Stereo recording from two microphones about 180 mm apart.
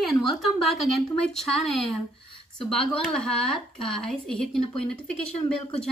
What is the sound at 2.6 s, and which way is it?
A woman's voice, 5° left (ahead or behind).